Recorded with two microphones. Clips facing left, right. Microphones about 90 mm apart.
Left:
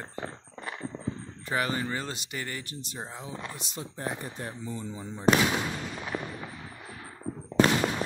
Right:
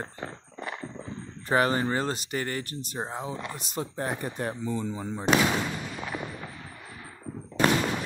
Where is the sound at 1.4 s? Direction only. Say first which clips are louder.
Right 6 dB; 40° right (ahead or behind).